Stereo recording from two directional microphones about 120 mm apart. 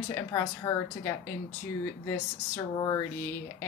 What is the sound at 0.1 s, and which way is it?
Speech, 25° left (ahead or behind).